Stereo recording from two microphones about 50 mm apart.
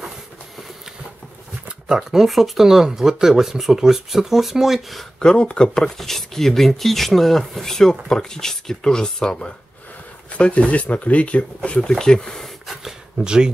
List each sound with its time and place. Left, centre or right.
1.9 s speech: centre
5.2 s speech: centre
10.3 s speech: left
11.9 s speech: centre
12.8 s speech: centre